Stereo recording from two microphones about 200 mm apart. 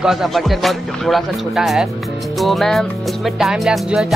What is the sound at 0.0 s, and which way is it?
Music, centre (ahead or behind).